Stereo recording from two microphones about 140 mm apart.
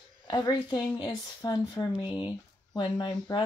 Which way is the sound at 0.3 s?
30° left (ahead or behind).